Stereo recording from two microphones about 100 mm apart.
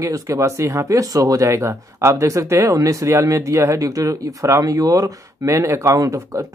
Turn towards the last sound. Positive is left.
turn(degrees=-35)  # may be behind; listen again after turning